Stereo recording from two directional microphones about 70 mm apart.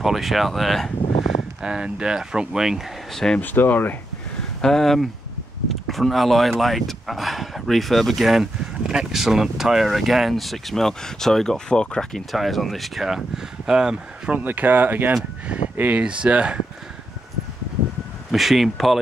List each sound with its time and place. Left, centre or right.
0.0 s speech: centre
1.6 s speech: centre
3.1 s speech: centre
3.3 s speech: left
4.6 s speech: centre
14.3 s speech: right
16.0 s speech: centre
18.3 s speech: centre